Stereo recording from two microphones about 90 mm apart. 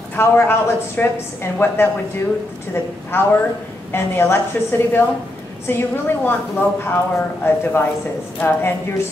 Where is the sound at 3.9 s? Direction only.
25° left (ahead or behind).